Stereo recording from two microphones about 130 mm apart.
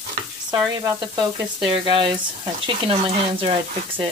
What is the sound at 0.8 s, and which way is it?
Frying, 35° right (ahead or behind).